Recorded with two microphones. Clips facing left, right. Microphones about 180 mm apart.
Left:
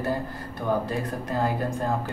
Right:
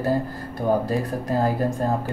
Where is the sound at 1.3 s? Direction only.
35° right (ahead or behind).